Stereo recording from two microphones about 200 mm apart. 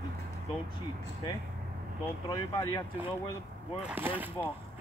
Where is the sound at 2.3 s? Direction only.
20° left (ahead or behind).